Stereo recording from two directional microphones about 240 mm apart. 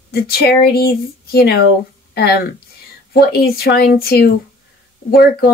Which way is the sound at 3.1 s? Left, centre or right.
Left.